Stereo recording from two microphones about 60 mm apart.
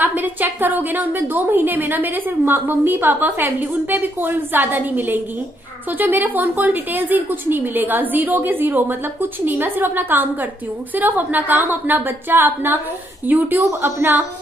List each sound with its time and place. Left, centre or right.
0.0 s a woman's voice: right